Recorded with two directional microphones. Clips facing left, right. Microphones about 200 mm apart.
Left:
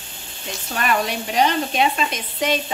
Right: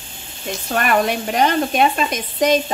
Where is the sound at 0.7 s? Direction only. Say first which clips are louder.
Right 4 dB; 55° right (ahead or behind).